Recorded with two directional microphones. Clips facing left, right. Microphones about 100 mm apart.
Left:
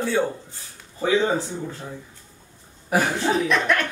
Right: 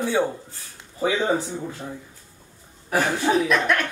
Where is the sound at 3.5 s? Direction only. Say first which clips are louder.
Even; centre (ahead or behind).